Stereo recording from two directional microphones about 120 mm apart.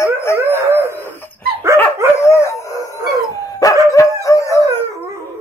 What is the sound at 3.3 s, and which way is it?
Dog, 30° left (ahead or behind).